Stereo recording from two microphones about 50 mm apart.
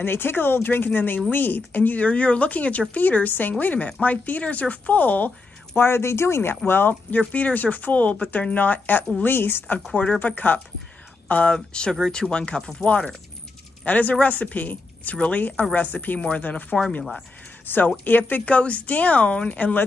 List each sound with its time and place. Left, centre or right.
0.0 s speech: left
2.0 s speech: left
5.8 s speech: left
6.7 s speech: left
9.9 s speech: left
11.5 s speech: centre
13.8 s a woman's voice: left
16.2 s speech: left
16.7 s speech: centre
17.6 s speech: left